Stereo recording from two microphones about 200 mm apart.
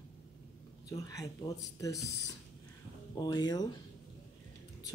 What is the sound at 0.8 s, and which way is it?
Speech, 15° left (ahead or behind).